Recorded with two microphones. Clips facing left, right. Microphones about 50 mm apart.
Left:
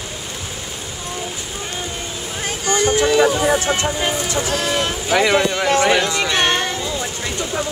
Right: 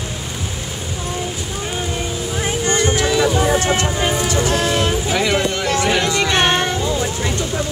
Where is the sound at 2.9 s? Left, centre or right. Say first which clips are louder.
Left 2 dB; centre.